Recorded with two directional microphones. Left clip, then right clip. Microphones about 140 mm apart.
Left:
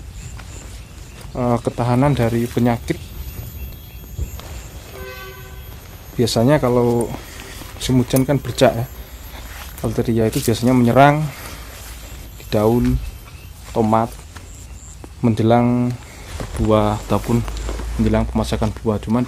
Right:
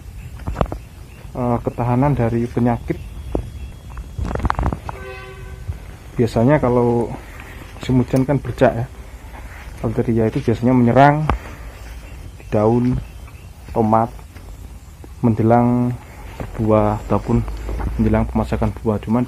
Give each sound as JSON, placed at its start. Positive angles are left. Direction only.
{"t": 1.3, "sound": "speech", "side_deg": 25}
{"t": 6.1, "sound": "speech", "side_deg": 5}
{"t": 12.4, "sound": "speech", "side_deg": 5}
{"t": 15.2, "sound": "speech", "side_deg": 5}